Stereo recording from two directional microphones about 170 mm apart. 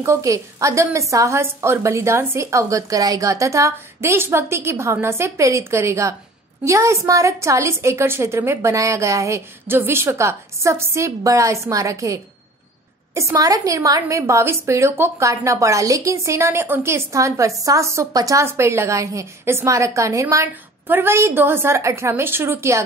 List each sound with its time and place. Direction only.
0.0 s a woman's voice: 20° right (ahead or behind)